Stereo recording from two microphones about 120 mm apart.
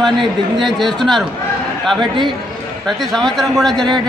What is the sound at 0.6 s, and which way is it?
A man's voice, centre (ahead or behind).